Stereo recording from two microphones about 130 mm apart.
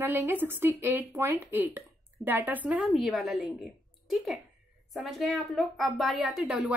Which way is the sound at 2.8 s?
Centre (ahead or behind).